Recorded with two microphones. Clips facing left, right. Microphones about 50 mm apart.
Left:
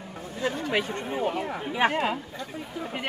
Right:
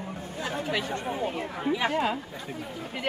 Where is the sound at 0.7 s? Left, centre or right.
Left.